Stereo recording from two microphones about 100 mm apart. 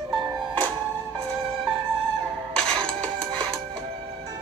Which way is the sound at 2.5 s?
10° left (ahead or behind).